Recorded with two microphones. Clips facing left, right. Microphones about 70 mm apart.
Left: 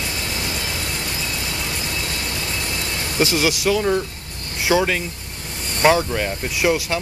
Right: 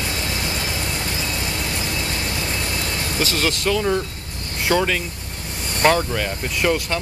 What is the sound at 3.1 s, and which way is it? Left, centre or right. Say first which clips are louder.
Speech: left 4 dB; centre.